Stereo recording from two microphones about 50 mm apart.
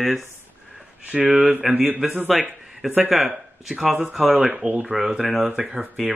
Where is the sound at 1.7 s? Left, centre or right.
Right.